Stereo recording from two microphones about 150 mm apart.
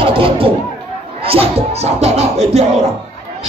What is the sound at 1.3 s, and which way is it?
Speech, 40° right (ahead or behind).